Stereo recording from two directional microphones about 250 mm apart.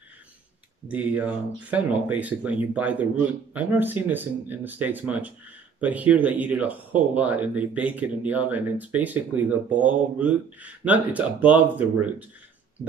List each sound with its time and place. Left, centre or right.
0.8 s speech: centre